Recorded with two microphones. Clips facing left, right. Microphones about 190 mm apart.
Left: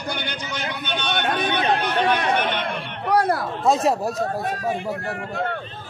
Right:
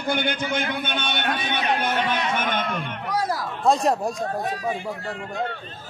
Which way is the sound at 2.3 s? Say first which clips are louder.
Left 2 dB; 45° right (ahead or behind).